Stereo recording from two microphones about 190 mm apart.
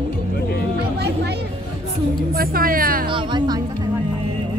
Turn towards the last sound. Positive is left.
turn(degrees=-25)  # may be behind; listen again after turning